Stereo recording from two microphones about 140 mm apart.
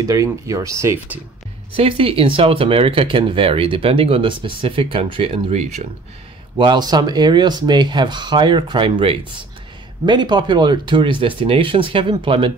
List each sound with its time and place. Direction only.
0.0 s speech: 25° right (ahead or behind)
1.8 s speech: 45° right (ahead or behind)
6.6 s speech: 30° right (ahead or behind)